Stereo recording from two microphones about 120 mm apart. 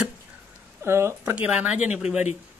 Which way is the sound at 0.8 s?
20° right (ahead or behind).